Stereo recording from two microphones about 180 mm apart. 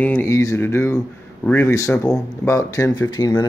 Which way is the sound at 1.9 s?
5° left (ahead or behind).